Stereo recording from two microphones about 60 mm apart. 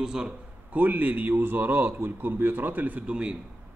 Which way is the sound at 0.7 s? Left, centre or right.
Right.